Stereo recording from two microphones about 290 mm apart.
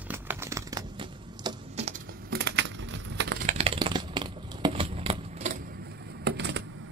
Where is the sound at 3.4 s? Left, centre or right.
Centre.